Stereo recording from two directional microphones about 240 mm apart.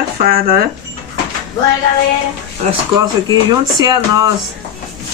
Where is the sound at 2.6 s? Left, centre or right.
Centre.